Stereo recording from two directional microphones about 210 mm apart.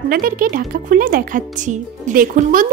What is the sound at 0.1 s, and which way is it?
Speech, 40° right (ahead or behind).